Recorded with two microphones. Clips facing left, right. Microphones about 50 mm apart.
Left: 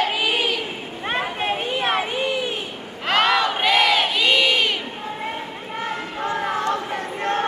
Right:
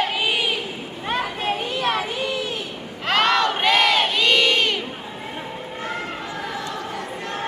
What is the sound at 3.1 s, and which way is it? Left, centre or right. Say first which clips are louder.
Crowd: even; centre.